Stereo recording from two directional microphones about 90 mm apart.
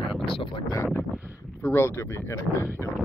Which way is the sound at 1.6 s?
30° left (ahead or behind).